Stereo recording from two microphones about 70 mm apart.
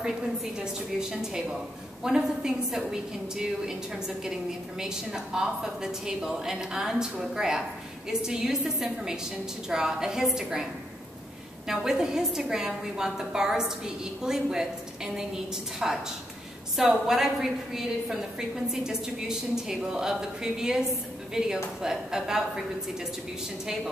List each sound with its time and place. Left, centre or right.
0.7 s a woman's voice: centre
15.8 s a woman's voice: centre
17.0 s a woman's voice: centre